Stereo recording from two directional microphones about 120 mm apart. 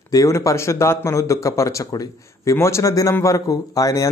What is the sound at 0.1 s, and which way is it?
A man's voice, 30° left (ahead or behind).